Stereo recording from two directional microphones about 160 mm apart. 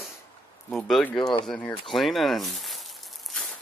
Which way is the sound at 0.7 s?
5° left (ahead or behind).